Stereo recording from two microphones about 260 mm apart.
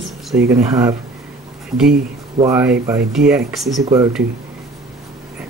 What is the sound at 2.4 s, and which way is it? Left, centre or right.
Speech, centre.